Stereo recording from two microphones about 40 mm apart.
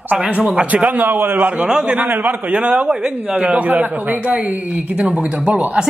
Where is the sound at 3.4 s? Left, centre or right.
Right.